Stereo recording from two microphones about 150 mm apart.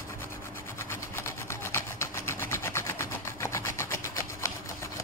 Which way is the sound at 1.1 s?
15° left (ahead or behind).